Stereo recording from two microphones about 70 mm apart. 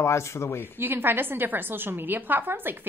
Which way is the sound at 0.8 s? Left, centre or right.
Right.